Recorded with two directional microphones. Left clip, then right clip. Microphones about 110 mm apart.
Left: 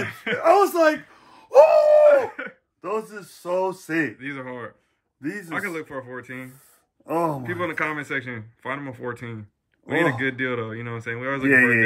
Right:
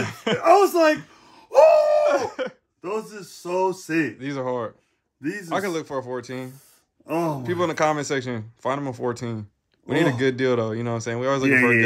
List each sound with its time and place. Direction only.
0.0 s speech: 35° right (ahead or behind)
0.4 s speech: centre (ahead or behind)
2.0 s a sound: 25° right (ahead or behind)
2.8 s speech: centre (ahead or behind)
4.2 s speech: 30° right (ahead or behind)
5.8 s speech: 15° right (ahead or behind)
7.1 s speech: 15° left (ahead or behind)
7.4 s speech: 30° right (ahead or behind)
11.4 s speech: 15° left (ahead or behind)